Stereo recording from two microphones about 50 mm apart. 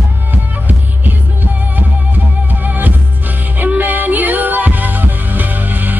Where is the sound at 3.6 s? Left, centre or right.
Right.